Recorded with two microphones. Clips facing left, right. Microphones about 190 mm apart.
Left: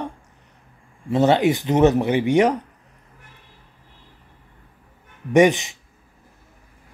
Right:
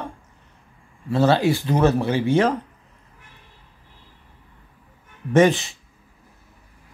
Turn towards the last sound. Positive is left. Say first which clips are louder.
# left 1 dB
turn(degrees=15)  # may be behind; listen again after turning